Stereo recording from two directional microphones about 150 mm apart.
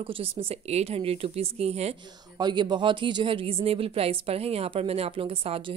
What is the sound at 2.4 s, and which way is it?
A woman's voice, 30° right (ahead or behind).